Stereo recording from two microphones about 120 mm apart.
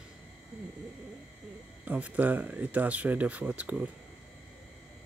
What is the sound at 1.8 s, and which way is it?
Speech, 15° right (ahead or behind).